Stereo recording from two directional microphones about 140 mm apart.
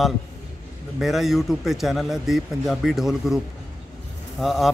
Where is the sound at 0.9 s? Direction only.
Centre (ahead or behind).